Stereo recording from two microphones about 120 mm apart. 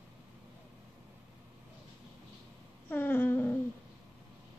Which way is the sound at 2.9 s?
15° left (ahead or behind).